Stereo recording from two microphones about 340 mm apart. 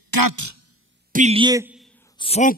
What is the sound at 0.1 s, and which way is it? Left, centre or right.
Speech, right.